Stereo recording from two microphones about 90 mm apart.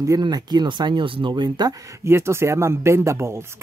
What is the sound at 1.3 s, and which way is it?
Speech, 50° right (ahead or behind).